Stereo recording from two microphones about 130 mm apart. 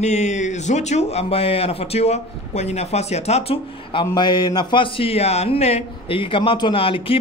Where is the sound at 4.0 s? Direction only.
35° left (ahead or behind).